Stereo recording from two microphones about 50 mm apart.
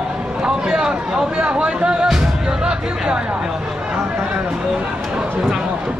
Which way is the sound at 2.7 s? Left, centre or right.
Centre.